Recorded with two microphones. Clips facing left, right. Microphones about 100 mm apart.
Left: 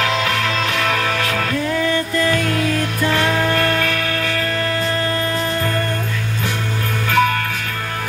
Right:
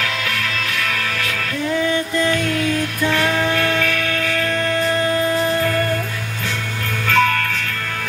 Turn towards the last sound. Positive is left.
turn(degrees=15)  # may be behind; listen again after turning